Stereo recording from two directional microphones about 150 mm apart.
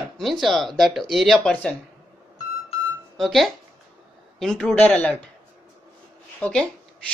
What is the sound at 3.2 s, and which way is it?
A man's voice, centre (ahead or behind).